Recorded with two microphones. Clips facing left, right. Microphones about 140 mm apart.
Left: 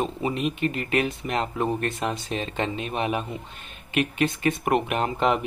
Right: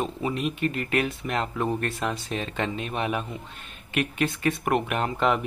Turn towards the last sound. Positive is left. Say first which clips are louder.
# left 1 dB
turn(degrees=5)  # may be behind; listen again after turning